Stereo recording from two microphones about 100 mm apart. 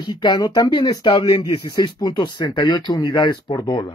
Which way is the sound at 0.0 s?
45° left (ahead or behind).